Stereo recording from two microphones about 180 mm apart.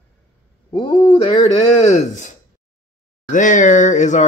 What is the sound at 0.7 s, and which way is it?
A man's voice, 25° left (ahead or behind).